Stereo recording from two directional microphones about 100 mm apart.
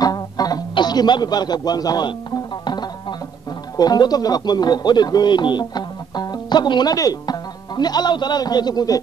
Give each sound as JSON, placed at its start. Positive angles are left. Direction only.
{"t": 0.0, "sound": "music", "side_deg": 40}
{"t": 3.7, "sound": "speech", "side_deg": 40}